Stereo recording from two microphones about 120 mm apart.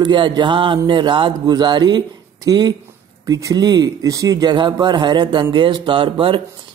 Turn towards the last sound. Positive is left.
turn(degrees=-45)  # may be behind; listen again after turning